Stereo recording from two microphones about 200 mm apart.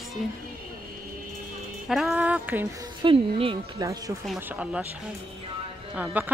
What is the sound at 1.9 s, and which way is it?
Speech, centre (ahead or behind).